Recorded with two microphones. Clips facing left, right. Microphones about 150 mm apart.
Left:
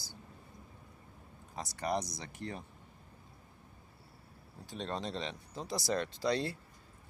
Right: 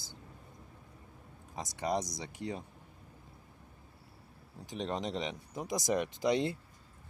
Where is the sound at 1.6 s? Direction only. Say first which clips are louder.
Right 1 dB; 15° right (ahead or behind).